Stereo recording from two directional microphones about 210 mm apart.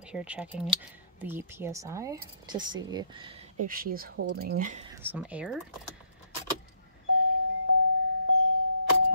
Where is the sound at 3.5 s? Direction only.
40° right (ahead or behind).